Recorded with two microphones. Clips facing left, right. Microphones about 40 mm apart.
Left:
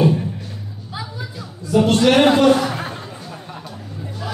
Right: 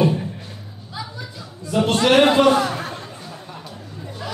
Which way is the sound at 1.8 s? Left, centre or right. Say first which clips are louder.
Left 3 dB; right.